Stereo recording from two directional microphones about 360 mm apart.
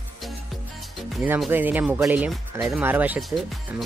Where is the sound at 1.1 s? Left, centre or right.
Centre.